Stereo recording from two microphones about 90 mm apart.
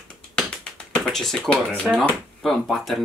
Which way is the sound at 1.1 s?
5° left (ahead or behind).